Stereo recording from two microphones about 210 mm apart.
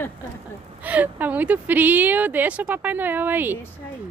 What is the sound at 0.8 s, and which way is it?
A woman's voice, 10° right (ahead or behind).